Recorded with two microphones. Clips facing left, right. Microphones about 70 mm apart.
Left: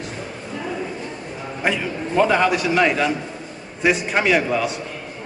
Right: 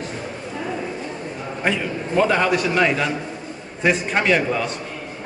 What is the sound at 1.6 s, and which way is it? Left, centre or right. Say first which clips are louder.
A man's voice: even; centre.